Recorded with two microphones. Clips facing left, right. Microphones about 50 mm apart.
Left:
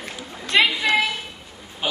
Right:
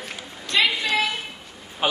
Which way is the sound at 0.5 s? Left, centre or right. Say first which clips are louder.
Left 3 dB; left.